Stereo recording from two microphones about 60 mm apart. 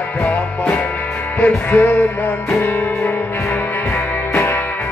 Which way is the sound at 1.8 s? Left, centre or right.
Left.